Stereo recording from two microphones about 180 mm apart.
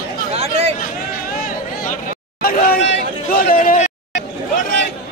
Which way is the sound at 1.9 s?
55° left (ahead or behind).